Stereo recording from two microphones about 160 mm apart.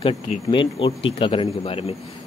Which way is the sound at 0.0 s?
30° left (ahead or behind).